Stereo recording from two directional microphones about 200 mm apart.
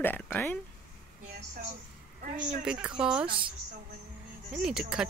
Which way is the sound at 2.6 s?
5° right (ahead or behind).